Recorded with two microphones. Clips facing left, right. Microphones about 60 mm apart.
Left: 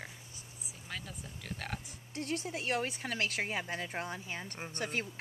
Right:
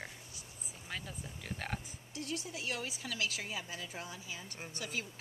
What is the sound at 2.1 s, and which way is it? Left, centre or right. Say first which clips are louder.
Speech: left 4 dB; left.